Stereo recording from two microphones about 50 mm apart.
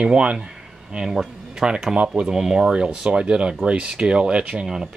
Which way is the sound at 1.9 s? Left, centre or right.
Right.